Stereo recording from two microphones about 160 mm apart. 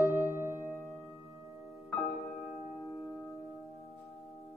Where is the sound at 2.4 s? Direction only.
Centre (ahead or behind).